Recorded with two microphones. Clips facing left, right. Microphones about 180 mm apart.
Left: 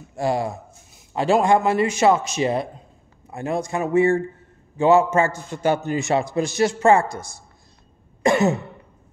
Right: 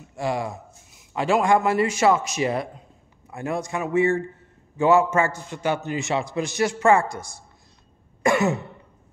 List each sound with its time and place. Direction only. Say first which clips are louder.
0.1 s a man's voice: left 4 dB; 35° left (ahead or behind)
5.5 s speech: left 4 dB; 40° left (ahead or behind)
7.1 s a woman's voice: left 1 dB; 5° left (ahead or behind)
8.2 s cough: left 2 dB; 20° left (ahead or behind)